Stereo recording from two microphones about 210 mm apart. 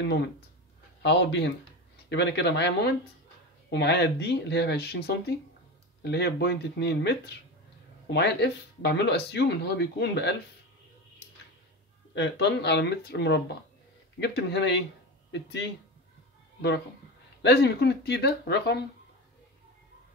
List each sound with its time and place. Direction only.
1.0 s speech: 55° left (ahead or behind)
12.1 s speech: 55° left (ahead or behind)
17.4 s speech: 55° left (ahead or behind)